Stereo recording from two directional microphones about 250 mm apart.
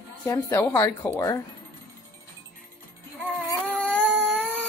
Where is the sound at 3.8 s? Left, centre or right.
Centre.